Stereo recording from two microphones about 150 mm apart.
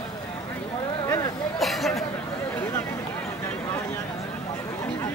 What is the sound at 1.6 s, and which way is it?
Chatter, centre (ahead or behind).